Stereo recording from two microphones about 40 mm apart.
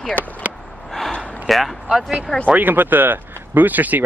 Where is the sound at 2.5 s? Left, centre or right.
Right.